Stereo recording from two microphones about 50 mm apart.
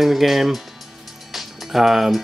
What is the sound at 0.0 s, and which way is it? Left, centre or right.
Speech, centre.